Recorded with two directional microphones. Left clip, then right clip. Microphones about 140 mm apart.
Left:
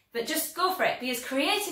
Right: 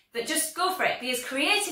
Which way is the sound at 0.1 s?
20° left (ahead or behind).